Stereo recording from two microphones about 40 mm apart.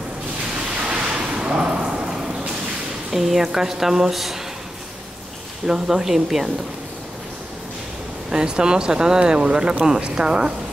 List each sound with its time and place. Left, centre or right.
0.8 s a sound: right
3.1 s speech: centre
5.7 s speech: centre
8.3 s speech: right